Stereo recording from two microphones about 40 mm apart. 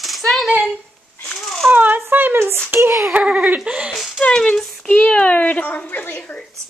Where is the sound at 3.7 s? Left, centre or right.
Right.